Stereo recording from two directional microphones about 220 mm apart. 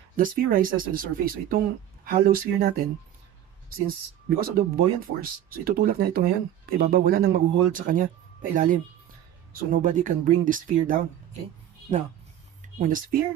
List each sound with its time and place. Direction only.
0.1 s speech: 40° right (ahead or behind)
3.7 s speech: 40° right (ahead or behind)
12.7 s speech: 40° right (ahead or behind)